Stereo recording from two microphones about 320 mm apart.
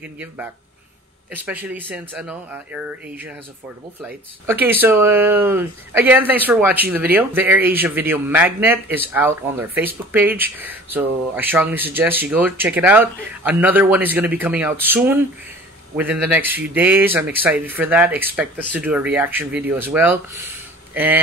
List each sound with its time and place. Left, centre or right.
0.0 s speech: centre
4.5 s speech: centre